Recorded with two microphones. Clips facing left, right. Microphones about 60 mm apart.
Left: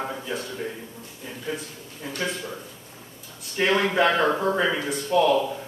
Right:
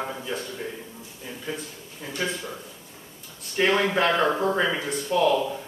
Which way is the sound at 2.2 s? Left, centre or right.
Centre.